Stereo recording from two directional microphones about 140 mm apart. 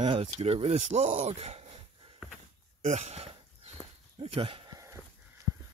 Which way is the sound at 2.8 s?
55° right (ahead or behind).